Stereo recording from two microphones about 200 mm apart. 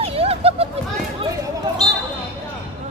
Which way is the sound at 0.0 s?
30° right (ahead or behind).